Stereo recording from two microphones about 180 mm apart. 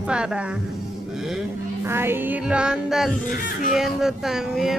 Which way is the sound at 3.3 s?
50° left (ahead or behind).